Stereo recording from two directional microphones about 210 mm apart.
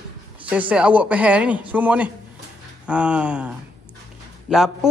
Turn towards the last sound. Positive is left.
turn(degrees=0)  # may be behind; listen again after turning